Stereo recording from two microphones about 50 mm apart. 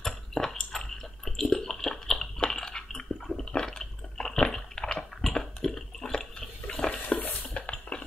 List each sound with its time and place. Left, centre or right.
0.0 s a sound: centre
6.7 s water: left
7.5 s dishes: left